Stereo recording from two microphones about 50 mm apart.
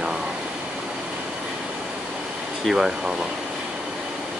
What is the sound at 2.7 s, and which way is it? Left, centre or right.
Speech, centre.